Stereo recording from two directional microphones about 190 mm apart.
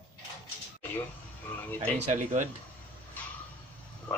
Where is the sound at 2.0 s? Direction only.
40° right (ahead or behind).